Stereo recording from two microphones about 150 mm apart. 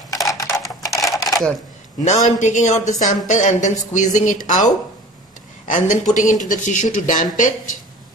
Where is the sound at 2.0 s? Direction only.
50° left (ahead or behind).